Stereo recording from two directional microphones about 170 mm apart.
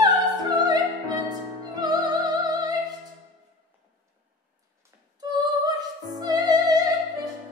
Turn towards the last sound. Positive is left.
turn(degrees=-25)  # may be behind; listen again after turning